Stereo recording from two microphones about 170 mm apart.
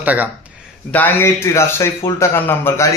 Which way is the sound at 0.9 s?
10° left (ahead or behind).